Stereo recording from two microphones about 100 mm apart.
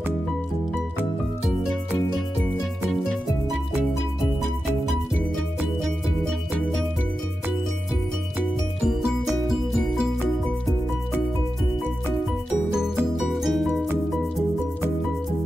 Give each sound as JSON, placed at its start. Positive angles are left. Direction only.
{"t": 2.9, "sound": "music", "side_deg": 5}
{"t": 8.8, "sound": "music", "side_deg": -5}
{"t": 13.1, "sound": "music", "side_deg": -5}